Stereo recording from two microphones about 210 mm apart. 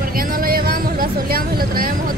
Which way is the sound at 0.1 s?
45° right (ahead or behind).